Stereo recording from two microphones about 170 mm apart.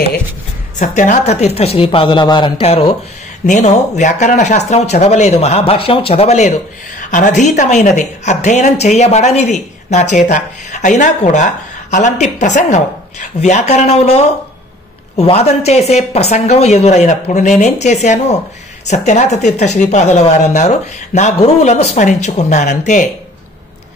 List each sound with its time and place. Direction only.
0.7 s speech: 45° left (ahead or behind)
3.4 s a woman's voice: 45° left (ahead or behind)